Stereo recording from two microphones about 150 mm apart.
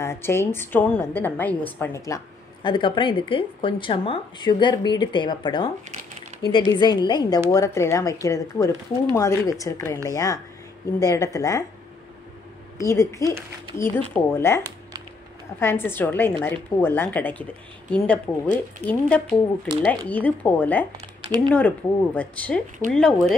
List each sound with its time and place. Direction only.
0.0 s a woman's voice: 15° left (ahead or behind)
12.7 s a woman's voice: 20° left (ahead or behind)
15.6 s speech: 15° left (ahead or behind)